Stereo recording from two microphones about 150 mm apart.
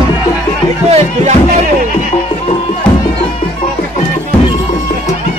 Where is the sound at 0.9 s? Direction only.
50° right (ahead or behind).